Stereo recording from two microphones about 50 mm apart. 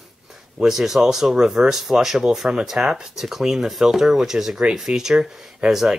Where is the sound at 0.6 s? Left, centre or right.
Centre.